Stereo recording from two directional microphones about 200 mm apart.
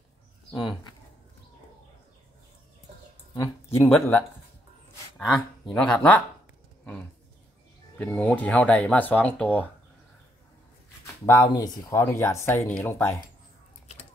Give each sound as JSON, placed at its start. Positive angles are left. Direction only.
{"t": 3.3, "sound": "speech", "side_deg": 10}
{"t": 5.1, "sound": "speech", "side_deg": 5}
{"t": 8.0, "sound": "speech", "side_deg": 5}
{"t": 11.2, "sound": "speech", "side_deg": 15}